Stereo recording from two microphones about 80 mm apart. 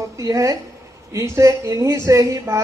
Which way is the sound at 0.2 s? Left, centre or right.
Right.